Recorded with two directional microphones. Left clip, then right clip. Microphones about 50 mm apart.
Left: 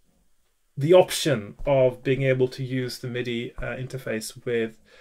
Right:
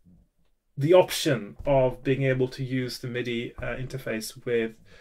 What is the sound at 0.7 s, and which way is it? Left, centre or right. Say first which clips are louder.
Speech: left 2 dB; centre.